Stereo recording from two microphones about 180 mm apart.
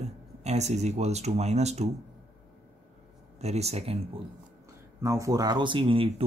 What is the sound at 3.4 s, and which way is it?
Speech, 35° right (ahead or behind).